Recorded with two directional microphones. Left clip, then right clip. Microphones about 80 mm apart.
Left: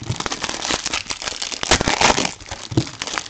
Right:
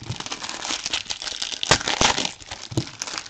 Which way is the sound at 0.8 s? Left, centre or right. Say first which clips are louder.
Left 3 dB; centre.